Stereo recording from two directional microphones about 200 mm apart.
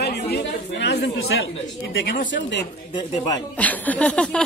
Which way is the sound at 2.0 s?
45° left (ahead or behind).